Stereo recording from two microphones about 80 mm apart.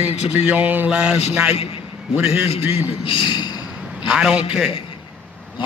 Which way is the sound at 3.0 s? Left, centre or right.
Left.